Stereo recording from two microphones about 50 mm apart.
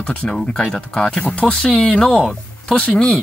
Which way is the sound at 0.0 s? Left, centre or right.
Left.